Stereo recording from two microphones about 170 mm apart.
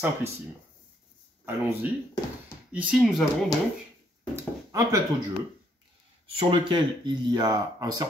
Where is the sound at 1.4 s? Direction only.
15° right (ahead or behind).